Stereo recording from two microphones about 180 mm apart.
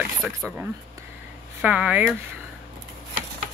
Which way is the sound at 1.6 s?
5° right (ahead or behind).